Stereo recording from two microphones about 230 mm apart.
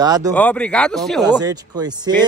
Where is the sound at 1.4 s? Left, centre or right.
Centre.